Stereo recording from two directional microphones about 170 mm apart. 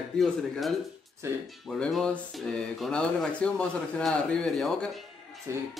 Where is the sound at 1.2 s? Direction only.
15° right (ahead or behind).